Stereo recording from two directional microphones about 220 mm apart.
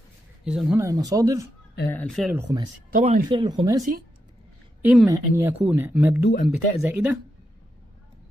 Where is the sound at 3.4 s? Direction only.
20° right (ahead or behind).